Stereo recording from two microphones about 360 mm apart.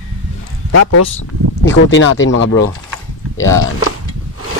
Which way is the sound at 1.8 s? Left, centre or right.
Left.